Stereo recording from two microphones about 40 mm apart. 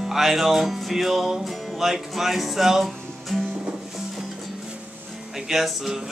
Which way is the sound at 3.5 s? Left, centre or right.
Right.